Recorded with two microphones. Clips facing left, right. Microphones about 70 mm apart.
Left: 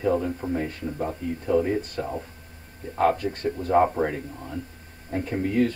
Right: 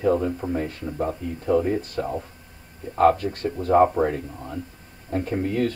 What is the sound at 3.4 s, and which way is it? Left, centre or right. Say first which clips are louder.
Speech: right 3 dB; right.